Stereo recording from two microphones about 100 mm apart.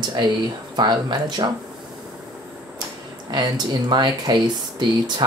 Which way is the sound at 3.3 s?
45° right (ahead or behind).